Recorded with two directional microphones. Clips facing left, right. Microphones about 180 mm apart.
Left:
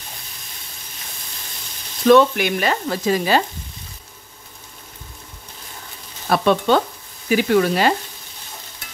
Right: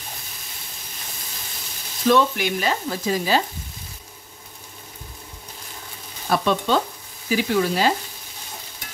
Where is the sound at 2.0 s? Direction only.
65° left (ahead or behind).